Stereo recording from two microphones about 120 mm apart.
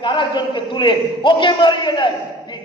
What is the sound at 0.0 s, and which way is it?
A man's voice, 40° left (ahead or behind).